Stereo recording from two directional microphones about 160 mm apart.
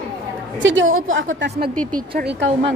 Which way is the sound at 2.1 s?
90° right.